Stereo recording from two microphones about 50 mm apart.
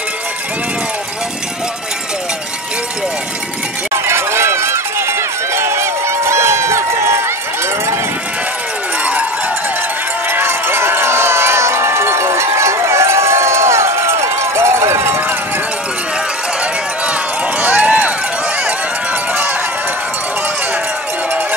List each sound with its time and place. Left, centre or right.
3.9 s run: right
10.3 s run: right
17.6 s run: right